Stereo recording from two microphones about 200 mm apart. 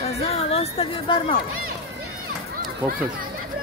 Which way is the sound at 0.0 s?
30° left (ahead or behind).